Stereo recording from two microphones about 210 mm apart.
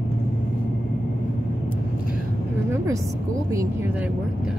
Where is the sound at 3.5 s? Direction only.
15° right (ahead or behind).